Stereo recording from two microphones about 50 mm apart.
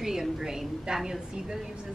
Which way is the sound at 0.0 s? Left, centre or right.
Centre.